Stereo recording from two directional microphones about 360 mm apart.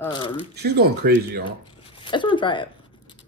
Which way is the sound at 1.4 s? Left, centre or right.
Centre.